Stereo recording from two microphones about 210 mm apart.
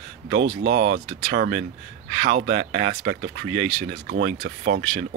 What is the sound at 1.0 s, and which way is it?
Speech, 40° right (ahead or behind).